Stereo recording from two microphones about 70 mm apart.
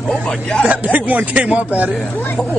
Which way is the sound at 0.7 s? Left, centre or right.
Right.